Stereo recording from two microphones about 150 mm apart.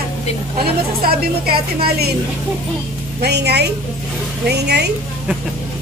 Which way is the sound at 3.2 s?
90° right.